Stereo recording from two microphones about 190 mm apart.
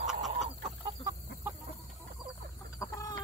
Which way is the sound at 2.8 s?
15° left (ahead or behind).